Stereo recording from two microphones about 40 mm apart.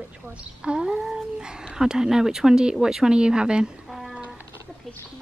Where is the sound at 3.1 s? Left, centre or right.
Right.